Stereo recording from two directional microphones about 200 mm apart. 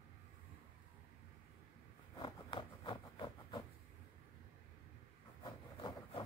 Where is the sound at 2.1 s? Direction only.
25° left (ahead or behind).